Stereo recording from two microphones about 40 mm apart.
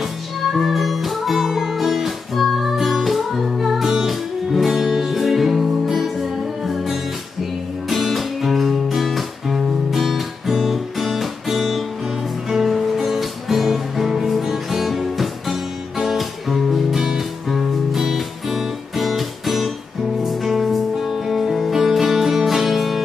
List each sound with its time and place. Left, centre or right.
0.0 s music: centre